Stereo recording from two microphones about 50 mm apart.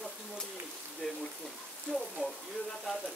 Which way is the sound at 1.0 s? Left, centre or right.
Centre.